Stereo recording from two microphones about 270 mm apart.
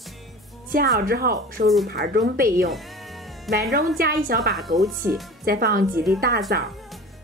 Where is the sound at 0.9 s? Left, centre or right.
Right.